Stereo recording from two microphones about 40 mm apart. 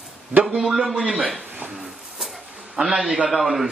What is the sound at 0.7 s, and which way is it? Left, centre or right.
Speech, centre.